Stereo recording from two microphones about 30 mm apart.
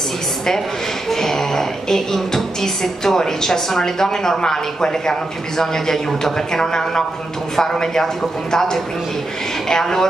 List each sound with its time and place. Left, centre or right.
1.1 s a man's voice: centre